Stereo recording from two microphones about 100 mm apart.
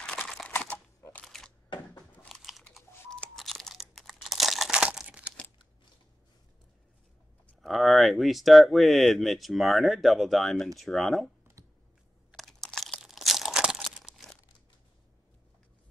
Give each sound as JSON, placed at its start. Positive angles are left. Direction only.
{"t": 0.5, "sound": "typewriter", "side_deg": 15}
{"t": 1.2, "sound": "a sound", "side_deg": 5}
{"t": 2.2, "sound": "chewing", "side_deg": 0}
{"t": 3.1, "sound": "crunch", "side_deg": 5}
{"t": 3.9, "sound": "crumpling", "side_deg": 0}
{"t": 7.6, "sound": "speech", "side_deg": 0}
{"t": 11.6, "sound": "typing", "side_deg": -30}
{"t": 12.3, "sound": "crunch", "side_deg": 0}